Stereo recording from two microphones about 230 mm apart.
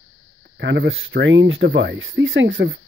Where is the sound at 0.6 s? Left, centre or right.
Right.